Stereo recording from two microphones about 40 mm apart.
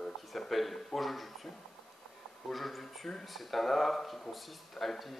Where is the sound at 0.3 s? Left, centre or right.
Centre.